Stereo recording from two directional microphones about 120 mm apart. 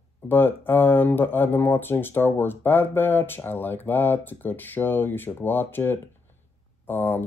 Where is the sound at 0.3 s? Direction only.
20° left (ahead or behind).